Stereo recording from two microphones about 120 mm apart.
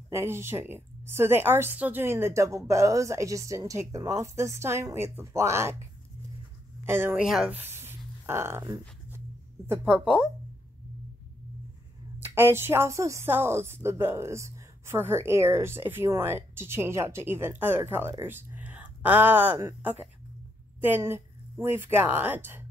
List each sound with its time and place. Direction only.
0.1 s a woman's voice: 20° right (ahead or behind)
6.9 s a woman's voice: 20° right (ahead or behind)
7.2 s speech: 5° right (ahead or behind)
7.5 s a sound: 20° right (ahead or behind)
9.9 s speech: 5° right (ahead or behind)
12.2 s a woman's voice: 20° right (ahead or behind)
20.8 s speech: 20° right (ahead or behind)